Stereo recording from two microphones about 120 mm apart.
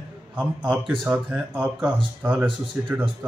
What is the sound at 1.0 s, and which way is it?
Speech, 5° right (ahead or behind).